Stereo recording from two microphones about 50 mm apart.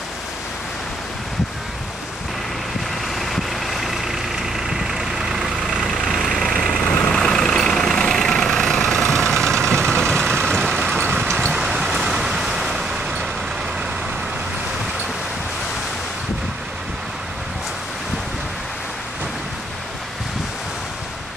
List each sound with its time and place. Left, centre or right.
3.2 s vehicle: centre
5.9 s vehicle: centre
6.8 s vehicle: left
7.1 s vehicle: centre
11.5 s vehicle: centre